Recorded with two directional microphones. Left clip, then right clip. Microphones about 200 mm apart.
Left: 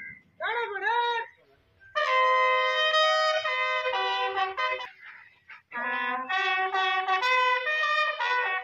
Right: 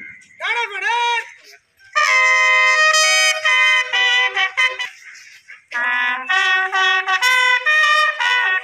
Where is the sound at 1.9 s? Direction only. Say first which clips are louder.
Right 9 dB; 10° left (ahead or behind).